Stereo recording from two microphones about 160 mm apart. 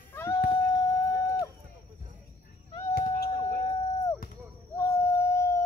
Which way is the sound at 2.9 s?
65° left (ahead or behind).